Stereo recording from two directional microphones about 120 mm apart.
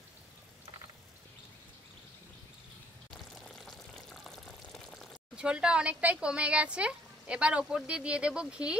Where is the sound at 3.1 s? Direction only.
Centre (ahead or behind).